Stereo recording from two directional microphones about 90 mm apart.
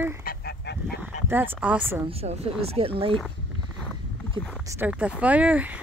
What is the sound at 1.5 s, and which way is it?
Speech, 15° right (ahead or behind).